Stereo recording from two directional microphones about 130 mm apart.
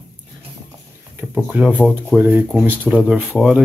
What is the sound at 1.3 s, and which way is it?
Speech, 10° right (ahead or behind).